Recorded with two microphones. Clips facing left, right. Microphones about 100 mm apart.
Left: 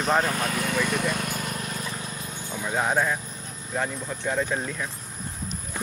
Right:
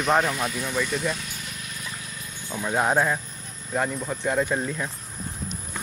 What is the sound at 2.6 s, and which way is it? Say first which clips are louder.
Speech: right 2 dB; 15° right (ahead or behind).